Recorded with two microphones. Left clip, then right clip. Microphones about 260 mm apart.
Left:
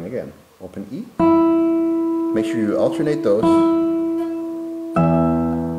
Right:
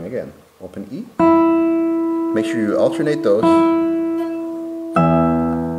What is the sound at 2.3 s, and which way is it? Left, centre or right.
Speech, centre.